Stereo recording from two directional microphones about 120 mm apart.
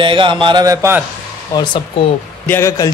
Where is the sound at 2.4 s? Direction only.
20° left (ahead or behind).